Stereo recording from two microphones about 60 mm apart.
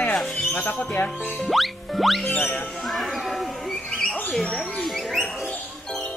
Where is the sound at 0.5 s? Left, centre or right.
Left.